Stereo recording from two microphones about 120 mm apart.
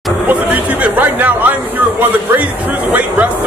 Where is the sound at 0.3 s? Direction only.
15° right (ahead or behind).